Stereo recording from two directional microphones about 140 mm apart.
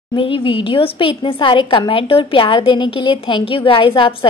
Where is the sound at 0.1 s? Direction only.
35° left (ahead or behind).